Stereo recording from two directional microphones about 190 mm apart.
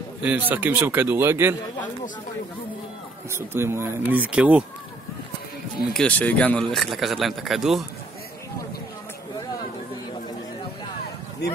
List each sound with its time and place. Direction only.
0.2 s speech: 10° right (ahead or behind)
3.3 s speech: 15° right (ahead or behind)
5.9 s a man's voice: 5° left (ahead or behind)
11.4 s a man's voice: 60° left (ahead or behind)